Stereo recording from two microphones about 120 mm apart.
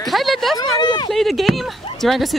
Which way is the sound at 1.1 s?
Centre (ahead or behind).